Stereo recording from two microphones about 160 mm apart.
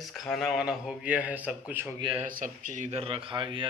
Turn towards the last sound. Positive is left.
turn(degrees=-30)  # may be behind; listen again after turning